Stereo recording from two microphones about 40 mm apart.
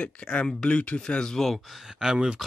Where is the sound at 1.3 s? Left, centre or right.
Centre.